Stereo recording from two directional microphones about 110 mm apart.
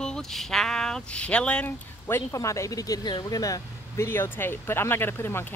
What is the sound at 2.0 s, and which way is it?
Speech, 25° left (ahead or behind).